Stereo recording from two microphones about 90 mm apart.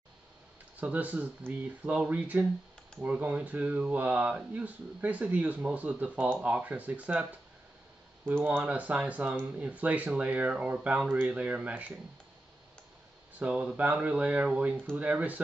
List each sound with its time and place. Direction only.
0.7 s speech: 15° right (ahead or behind)
13.4 s speech: 10° right (ahead or behind)